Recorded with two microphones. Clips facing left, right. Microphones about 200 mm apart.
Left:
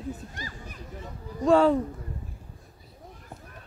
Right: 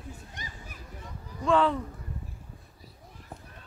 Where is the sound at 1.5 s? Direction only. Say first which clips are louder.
Left 5 dB; 40° left (ahead or behind).